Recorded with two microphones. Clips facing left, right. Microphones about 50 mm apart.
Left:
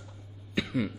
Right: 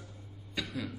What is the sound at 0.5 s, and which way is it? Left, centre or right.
Cough, left.